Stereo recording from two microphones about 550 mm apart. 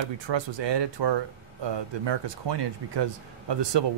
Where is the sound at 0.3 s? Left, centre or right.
Right.